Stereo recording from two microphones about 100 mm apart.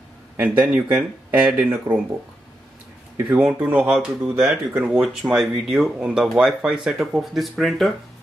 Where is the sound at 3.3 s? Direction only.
20° right (ahead or behind); by 7.9 s centre (ahead or behind).